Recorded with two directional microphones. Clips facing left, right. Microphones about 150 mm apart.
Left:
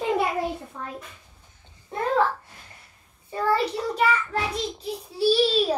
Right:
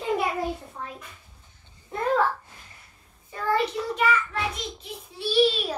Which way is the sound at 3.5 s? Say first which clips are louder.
Left 1 dB; 35° left (ahead or behind).